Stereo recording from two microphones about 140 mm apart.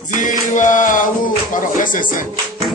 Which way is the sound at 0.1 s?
65° left (ahead or behind).